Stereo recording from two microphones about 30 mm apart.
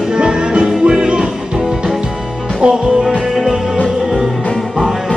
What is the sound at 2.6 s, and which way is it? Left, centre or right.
Music, right.